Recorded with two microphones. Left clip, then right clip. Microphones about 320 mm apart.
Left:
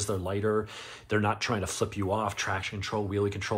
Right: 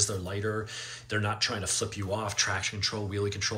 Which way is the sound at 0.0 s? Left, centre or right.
Centre.